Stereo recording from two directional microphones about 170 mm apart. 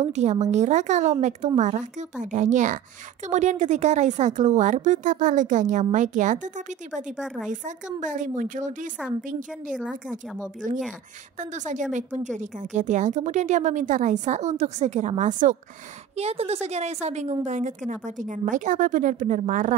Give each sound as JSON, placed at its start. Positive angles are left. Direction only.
{"t": 0.0, "sound": "a woman's voice", "side_deg": -40}
{"t": 7.2, "sound": "a woman's voice", "side_deg": 0}
{"t": 7.6, "sound": "a woman's voice", "side_deg": -50}
{"t": 9.8, "sound": "a woman's voice", "side_deg": -5}
{"t": 11.3, "sound": "a woman's voice", "side_deg": -45}
{"t": 16.2, "sound": "a woman's voice", "side_deg": -40}